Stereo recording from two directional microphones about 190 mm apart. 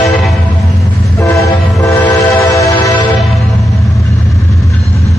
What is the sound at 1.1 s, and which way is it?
Train, 15° left (ahead or behind).